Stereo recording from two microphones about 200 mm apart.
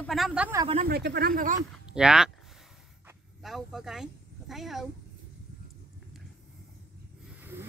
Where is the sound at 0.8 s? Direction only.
55° right (ahead or behind).